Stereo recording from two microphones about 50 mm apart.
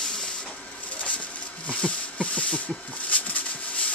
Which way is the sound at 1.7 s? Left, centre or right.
Left.